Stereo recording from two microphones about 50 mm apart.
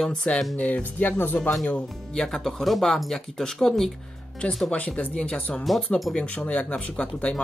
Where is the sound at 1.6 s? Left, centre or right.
Centre.